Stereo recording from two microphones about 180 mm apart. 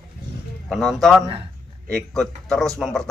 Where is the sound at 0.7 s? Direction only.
Centre (ahead or behind).